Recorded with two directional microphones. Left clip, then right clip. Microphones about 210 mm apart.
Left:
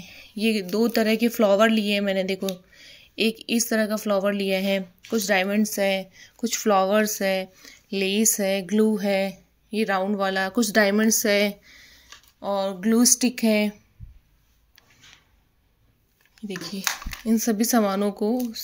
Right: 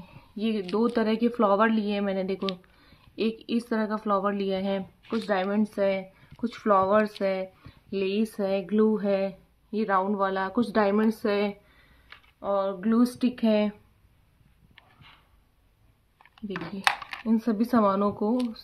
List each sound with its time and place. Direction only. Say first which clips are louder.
0.4 s a woman's voice: left 4 dB; 30° left (ahead or behind)
16.4 s a woman's voice: right 2 dB; 20° left (ahead or behind)